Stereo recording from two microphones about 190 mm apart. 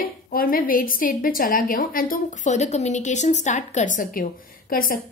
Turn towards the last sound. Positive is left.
turn(degrees=50)  # may be behind; listen again after turning